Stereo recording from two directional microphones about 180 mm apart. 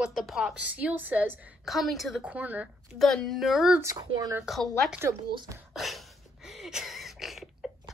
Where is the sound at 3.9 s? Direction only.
20° right (ahead or behind).